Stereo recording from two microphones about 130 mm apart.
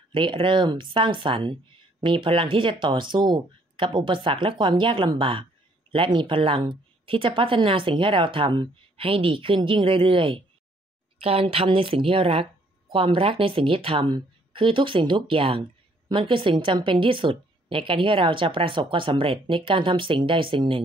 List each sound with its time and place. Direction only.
0.1 s speech: 40° right (ahead or behind)